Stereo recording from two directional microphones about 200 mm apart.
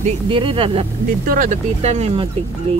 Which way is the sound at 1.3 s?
40° right (ahead or behind).